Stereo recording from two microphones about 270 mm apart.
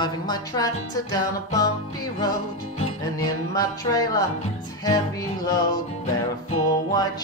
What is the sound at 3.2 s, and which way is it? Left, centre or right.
Music, centre.